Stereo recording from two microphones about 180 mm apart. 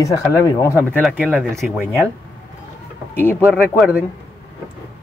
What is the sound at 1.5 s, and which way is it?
Speech, 10° right (ahead or behind).